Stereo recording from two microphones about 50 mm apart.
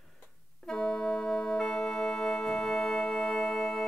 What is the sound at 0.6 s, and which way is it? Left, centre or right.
Organ, centre.